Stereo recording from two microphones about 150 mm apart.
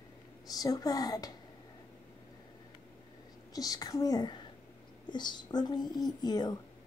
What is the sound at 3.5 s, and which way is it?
Speech, 25° left (ahead or behind).